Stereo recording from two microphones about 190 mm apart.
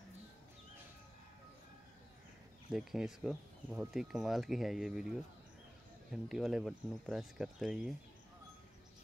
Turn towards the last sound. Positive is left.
turn(degrees=0)  # may be behind; listen again after turning